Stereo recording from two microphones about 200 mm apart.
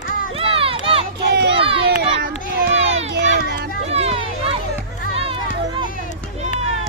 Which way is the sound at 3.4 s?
55° right (ahead or behind).